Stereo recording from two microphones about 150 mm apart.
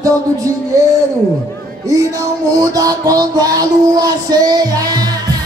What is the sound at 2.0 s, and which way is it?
Child singing, 25° right (ahead or behind).